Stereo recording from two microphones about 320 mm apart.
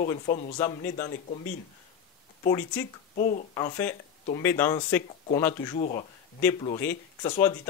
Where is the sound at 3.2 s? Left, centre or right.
Left.